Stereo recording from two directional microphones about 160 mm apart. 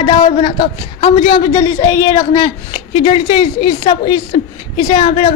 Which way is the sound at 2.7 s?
35° left (ahead or behind).